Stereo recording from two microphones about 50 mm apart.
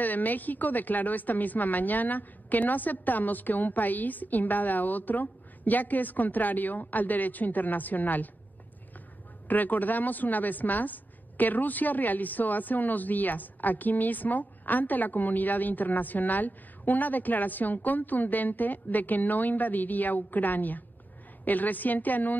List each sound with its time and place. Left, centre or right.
0.0 s speech: left
9.5 s speech: left